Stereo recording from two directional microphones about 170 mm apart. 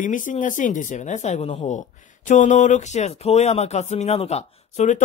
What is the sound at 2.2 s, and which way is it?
Speech, 45° left (ahead or behind).